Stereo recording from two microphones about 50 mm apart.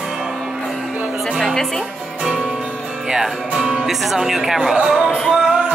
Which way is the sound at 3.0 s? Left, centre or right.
Centre.